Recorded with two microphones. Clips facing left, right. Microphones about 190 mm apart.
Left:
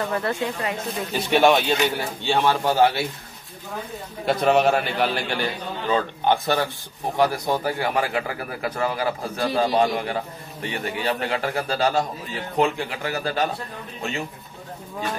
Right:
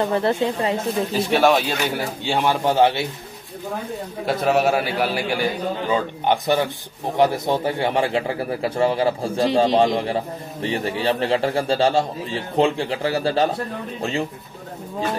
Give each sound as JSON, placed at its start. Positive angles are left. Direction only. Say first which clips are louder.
{"t": 0.1, "sound": "speech", "louder": "right 5 dB", "side_deg": -30}
{"t": 0.8, "sound": "speech", "louder": "right 5 dB", "side_deg": 0}
{"t": 2.2, "sound": "speech", "louder": "even", "side_deg": -15}
{"t": 4.3, "sound": "a man's voice", "louder": "even", "side_deg": -5}